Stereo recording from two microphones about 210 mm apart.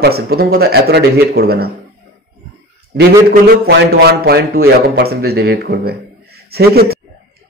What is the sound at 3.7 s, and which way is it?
A man's voice, 55° right (ahead or behind).